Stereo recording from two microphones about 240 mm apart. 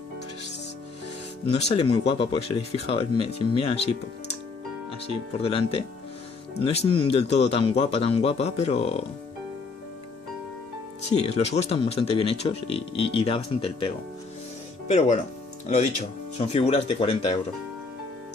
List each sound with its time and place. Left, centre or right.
1.7 s speech: left
5.4 s speech: left
11.2 s speech: left
16.3 s speech: left